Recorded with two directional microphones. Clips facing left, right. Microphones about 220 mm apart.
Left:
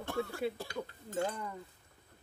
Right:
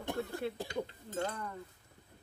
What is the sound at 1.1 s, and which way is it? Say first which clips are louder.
Speech: left 3 dB; 10° left (ahead or behind).